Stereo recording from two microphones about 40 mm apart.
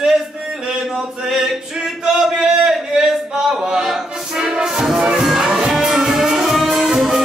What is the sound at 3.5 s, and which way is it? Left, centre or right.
Music, centre.